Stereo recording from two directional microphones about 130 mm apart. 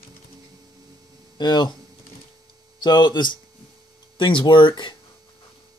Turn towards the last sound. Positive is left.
turn(degrees=35)  # may be behind; listen again after turning